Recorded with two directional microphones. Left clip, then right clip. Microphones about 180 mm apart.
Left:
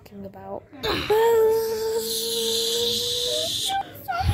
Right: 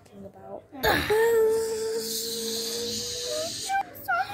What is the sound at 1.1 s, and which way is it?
Music, 15° left (ahead or behind).